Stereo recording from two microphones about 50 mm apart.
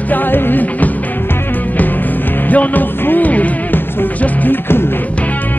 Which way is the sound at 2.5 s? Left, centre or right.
Left.